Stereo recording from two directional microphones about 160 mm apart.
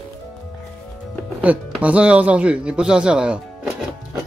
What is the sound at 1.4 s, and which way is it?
Speech, 10° right (ahead or behind).